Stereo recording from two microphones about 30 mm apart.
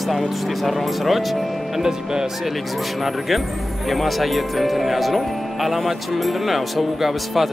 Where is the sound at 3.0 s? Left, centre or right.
Centre.